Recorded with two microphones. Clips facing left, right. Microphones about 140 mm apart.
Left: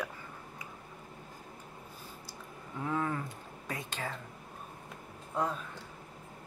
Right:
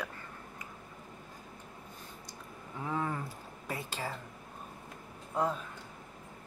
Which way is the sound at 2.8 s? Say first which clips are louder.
Left 1 dB; 5° right (ahead or behind).